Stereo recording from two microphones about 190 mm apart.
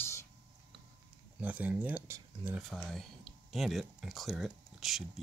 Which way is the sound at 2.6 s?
Centre (ahead or behind).